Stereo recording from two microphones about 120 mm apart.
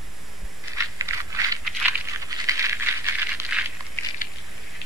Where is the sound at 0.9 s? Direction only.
25° right (ahead or behind).